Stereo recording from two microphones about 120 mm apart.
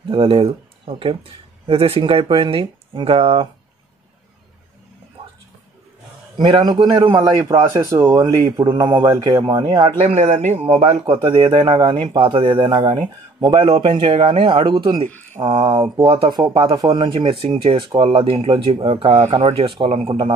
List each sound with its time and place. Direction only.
0.1 s speech: 45° right (ahead or behind)
6.3 s a man's voice: 55° right (ahead or behind)
6.6 s speech: 35° right (ahead or behind)
8.7 s speech: 40° right (ahead or behind)
9.9 s speech: 70° right (ahead or behind)
10.6 s speech: 45° right (ahead or behind)